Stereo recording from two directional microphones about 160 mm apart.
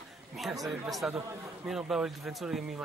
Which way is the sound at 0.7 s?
Centre (ahead or behind).